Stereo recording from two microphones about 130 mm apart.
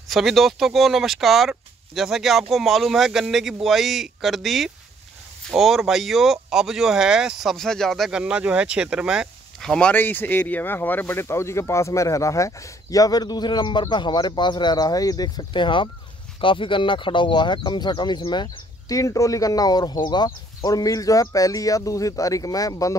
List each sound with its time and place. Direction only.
0.1 s speech: centre (ahead or behind)
9.7 s speech: 10° left (ahead or behind); by 22.9 s 25° left (ahead or behind)